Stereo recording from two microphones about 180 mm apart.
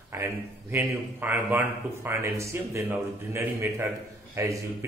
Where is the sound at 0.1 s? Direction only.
15° right (ahead or behind).